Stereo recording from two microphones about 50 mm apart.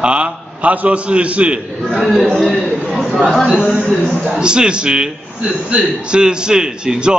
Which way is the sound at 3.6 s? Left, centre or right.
Centre.